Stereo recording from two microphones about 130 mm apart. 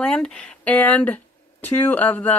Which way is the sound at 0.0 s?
5° left (ahead or behind).